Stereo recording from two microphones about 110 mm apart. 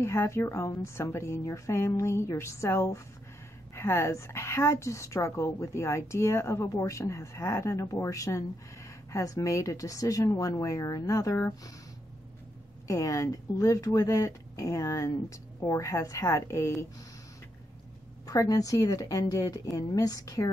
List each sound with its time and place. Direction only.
0.0 s a woman's voice: 25° left (ahead or behind)
12.8 s a woman's voice: 30° left (ahead or behind)
18.2 s speech: 35° left (ahead or behind)